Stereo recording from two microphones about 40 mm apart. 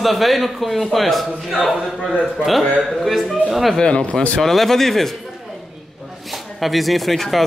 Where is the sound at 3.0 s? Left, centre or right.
Centre.